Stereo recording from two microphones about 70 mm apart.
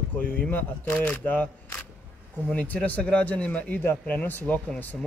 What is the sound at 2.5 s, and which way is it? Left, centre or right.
Speech, centre.